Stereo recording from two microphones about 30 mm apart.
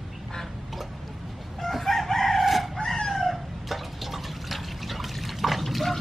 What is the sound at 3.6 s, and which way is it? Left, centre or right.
Liquid, centre.